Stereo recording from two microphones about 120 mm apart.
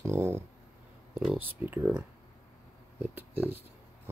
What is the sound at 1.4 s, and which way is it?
Speech, 15° right (ahead or behind).